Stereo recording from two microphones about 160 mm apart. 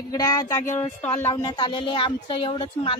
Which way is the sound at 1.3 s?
25° left (ahead or behind).